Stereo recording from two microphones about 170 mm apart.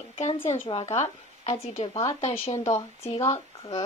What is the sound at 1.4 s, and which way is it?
Speech, 40° left (ahead or behind).